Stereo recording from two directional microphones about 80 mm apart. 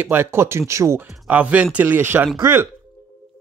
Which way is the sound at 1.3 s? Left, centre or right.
Centre.